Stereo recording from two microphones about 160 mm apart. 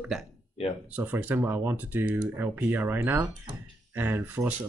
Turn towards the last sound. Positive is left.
turn(degrees=-10)  # may be behind; listen again after turning